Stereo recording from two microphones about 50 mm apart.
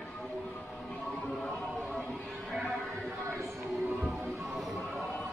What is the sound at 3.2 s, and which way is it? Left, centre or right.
Music, right.